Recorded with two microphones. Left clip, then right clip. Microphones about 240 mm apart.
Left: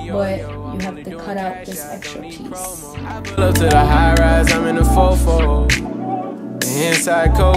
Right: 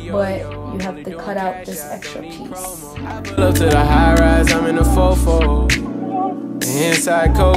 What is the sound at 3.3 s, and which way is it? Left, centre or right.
Music, centre.